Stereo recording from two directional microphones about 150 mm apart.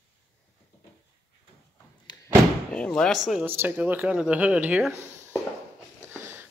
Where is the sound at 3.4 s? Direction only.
10° right (ahead or behind).